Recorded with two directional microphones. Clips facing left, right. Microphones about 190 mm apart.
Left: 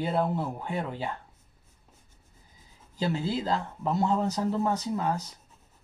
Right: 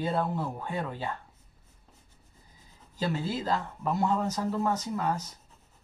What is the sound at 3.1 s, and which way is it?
Speech, 20° left (ahead or behind).